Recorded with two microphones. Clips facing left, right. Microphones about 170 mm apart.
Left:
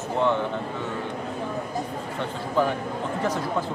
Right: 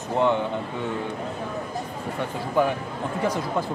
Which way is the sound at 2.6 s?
15° right (ahead or behind).